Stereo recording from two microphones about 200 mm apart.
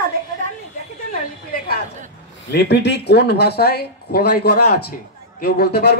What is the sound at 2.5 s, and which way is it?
A man's voice, 55° left (ahead or behind).